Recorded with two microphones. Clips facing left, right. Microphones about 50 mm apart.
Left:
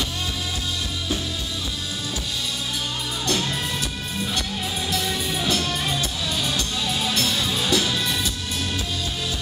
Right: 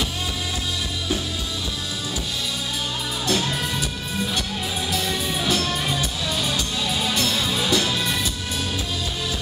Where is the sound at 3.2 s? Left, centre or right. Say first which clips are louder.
Right 2 dB; centre.